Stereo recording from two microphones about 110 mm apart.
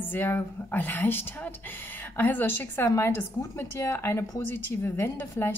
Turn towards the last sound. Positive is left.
turn(degrees=20)  # may be behind; listen again after turning